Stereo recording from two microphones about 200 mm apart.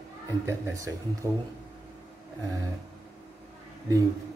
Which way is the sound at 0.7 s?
15° right (ahead or behind).